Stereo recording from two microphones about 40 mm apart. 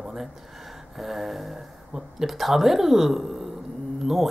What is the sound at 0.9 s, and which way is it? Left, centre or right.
Speech, centre.